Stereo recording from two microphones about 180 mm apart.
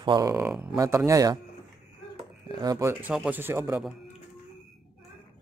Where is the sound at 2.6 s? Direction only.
20° right (ahead or behind).